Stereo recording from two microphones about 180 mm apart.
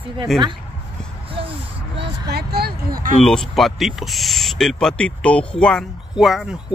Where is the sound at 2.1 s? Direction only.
65° right (ahead or behind).